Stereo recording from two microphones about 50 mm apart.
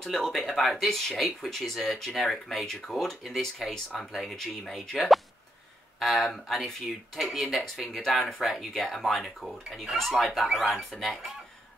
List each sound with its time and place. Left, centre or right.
0.0 s speech: centre